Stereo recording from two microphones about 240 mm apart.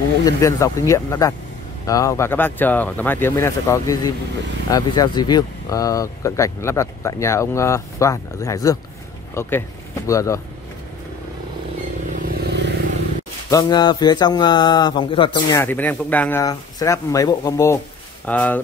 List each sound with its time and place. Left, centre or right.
0.2 s speech: centre
12.1 s motorcycle: right
13.5 s speech: centre